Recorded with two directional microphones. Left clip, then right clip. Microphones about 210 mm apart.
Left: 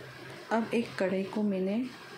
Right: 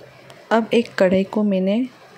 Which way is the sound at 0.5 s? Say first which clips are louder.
Right 13 dB; 40° right (ahead or behind).